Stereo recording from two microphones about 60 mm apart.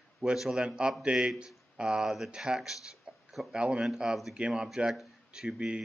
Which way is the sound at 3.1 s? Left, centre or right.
Centre.